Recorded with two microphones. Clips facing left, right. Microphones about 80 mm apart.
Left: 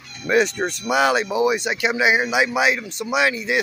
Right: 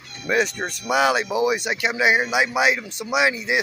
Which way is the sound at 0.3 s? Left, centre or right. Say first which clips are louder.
Left 3 dB; centre.